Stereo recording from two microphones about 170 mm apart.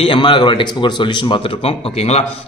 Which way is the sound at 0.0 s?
30° left (ahead or behind).